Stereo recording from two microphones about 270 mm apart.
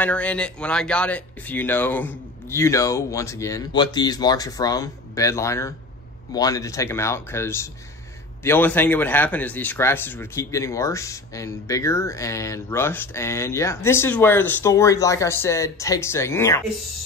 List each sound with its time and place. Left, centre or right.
0.0 s speech: centre